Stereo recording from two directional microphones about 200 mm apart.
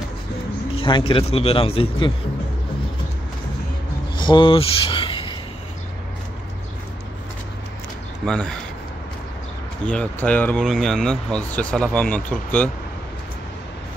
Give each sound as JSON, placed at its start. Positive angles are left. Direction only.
{"t": 0.7, "sound": "speech", "side_deg": 25}
{"t": 4.2, "sound": "speech", "side_deg": 25}
{"t": 8.3, "sound": "speech", "side_deg": 5}
{"t": 9.8, "sound": "speech", "side_deg": 5}